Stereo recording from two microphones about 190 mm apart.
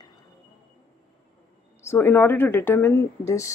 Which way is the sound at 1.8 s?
10° left (ahead or behind).